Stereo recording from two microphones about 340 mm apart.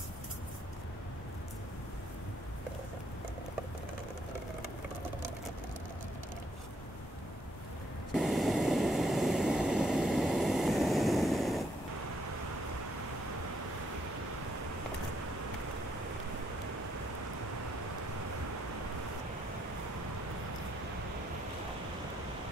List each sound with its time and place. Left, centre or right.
8.1 s vehicle: centre